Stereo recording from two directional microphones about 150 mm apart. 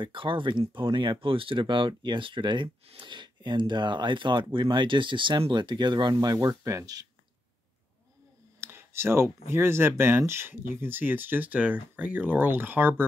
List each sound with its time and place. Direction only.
0.0 s speech: 35° right (ahead or behind)
8.5 s speech: 15° right (ahead or behind)